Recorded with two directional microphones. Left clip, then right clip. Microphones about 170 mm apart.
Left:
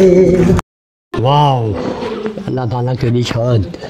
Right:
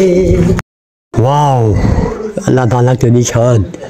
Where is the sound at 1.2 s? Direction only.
30° right (ahead or behind).